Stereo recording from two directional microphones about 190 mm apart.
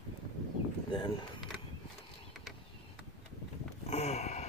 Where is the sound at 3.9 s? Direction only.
35° left (ahead or behind).